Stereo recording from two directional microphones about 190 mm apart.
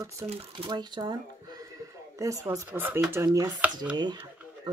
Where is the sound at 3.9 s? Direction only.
25° right (ahead or behind).